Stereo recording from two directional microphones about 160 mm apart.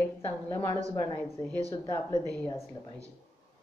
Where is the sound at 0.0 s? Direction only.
15° left (ahead or behind).